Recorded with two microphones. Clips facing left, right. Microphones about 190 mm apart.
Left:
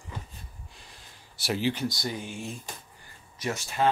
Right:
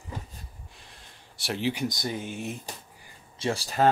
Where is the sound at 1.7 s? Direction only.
20° right (ahead or behind).